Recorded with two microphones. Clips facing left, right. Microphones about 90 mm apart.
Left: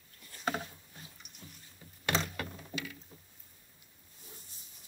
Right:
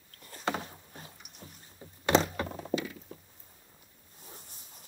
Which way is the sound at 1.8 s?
25° right (ahead or behind).